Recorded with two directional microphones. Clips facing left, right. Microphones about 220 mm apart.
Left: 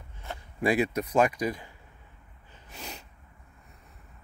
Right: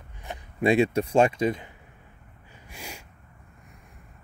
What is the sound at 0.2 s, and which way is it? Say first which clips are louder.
Speech: right 4 dB; 20° right (ahead or behind).